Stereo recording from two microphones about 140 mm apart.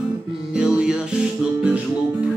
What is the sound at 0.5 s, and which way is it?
Music, 5° right (ahead or behind).